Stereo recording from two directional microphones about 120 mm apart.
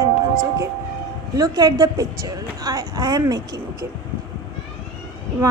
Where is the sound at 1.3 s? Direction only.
30° right (ahead or behind).